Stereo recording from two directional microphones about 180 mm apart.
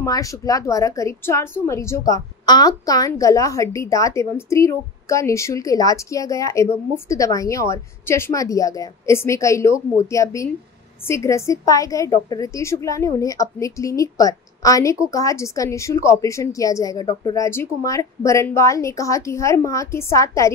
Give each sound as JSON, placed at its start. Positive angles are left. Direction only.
{"t": 0.0, "sound": "a woman's voice", "side_deg": 20}